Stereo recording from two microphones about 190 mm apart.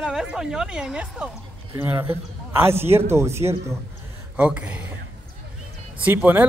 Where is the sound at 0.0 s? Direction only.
5° right (ahead or behind).